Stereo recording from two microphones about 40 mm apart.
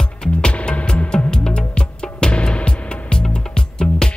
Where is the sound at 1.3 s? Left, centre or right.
Left.